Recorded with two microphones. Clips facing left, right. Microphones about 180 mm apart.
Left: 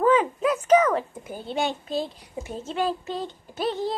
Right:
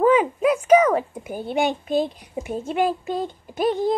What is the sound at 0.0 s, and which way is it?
A woman's voice, 10° right (ahead or behind).